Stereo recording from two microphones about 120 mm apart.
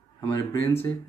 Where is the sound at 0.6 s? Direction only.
20° left (ahead or behind).